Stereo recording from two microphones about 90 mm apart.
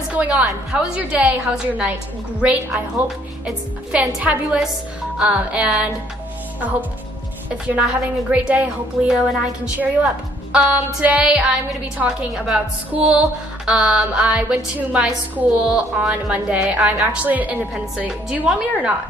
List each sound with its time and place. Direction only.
0.1 s a woman's voice: 15° right (ahead or behind)
4.0 s a woman's voice: 15° right (ahead or behind)
7.4 s a woman's voice: 15° right (ahead or behind)